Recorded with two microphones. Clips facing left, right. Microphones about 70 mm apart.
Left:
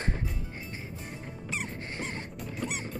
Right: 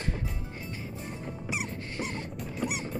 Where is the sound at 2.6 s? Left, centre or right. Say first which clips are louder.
Right 3 dB; centre.